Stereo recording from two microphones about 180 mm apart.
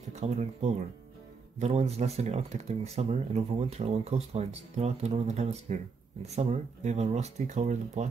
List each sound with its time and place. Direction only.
0.2 s speech: 40° right (ahead or behind)